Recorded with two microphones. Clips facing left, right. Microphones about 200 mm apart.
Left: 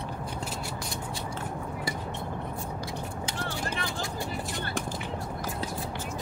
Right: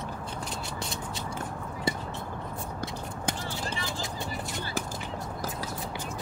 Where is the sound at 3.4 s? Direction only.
60° left (ahead or behind).